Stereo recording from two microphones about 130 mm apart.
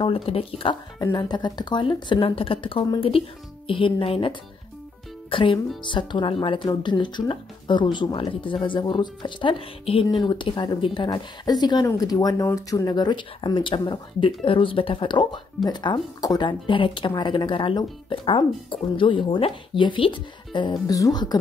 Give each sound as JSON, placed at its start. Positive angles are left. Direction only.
{"t": 0.0, "sound": "speech", "side_deg": 45}